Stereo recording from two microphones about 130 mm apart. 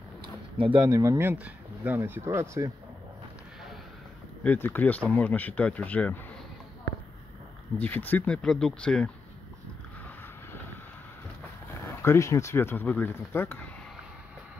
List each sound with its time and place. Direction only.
0.6 s speech: 40° right (ahead or behind)
0.8 s speech: 25° right (ahead or behind)
4.4 s speech: 15° left (ahead or behind)
7.7 s speech: 15° left (ahead or behind)
11.9 s speech: 20° left (ahead or behind)